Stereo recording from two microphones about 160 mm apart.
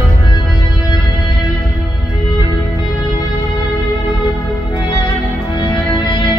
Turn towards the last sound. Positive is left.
turn(degrees=30)  # may be behind; listen again after turning